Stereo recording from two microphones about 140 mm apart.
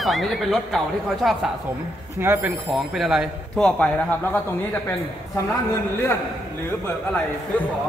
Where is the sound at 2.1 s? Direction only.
15° right (ahead or behind).